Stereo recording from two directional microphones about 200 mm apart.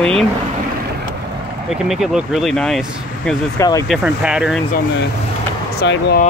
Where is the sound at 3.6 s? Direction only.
15° left (ahead or behind).